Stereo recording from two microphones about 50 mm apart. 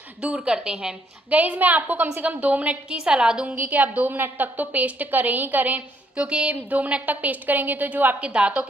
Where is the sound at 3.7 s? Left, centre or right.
Right.